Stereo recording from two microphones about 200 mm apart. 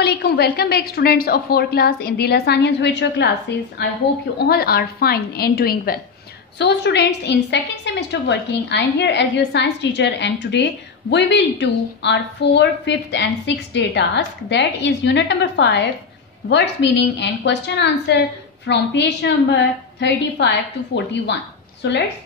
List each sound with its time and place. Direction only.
0.0 s a woman's voice: 55° left (ahead or behind)